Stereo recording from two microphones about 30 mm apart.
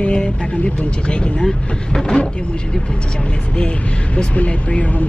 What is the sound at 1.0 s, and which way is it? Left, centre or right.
Speech, left.